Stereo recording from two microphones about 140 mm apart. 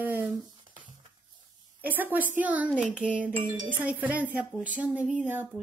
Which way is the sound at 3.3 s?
35° right (ahead or behind).